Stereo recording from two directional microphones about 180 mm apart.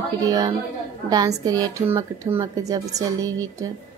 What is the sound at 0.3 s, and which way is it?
A woman's voice, 20° right (ahead or behind).